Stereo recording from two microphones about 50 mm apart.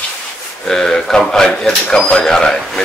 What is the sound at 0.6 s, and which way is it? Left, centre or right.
Speech, centre.